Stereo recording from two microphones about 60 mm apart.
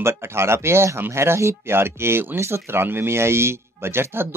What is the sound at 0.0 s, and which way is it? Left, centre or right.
Speech, right.